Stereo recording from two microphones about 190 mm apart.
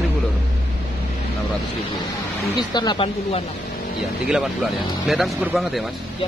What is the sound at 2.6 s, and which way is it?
Speech, 25° left (ahead or behind).